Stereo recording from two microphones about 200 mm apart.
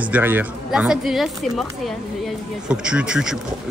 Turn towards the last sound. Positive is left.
turn(degrees=-5)  # may be behind; listen again after turning